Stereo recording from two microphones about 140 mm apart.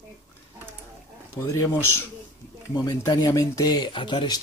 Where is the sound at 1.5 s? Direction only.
15° left (ahead or behind).